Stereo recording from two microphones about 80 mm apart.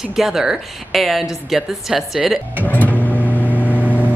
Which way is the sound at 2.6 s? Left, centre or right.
Left.